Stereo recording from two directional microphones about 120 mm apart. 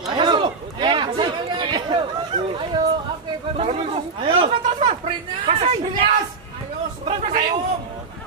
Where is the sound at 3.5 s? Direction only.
55° right (ahead or behind).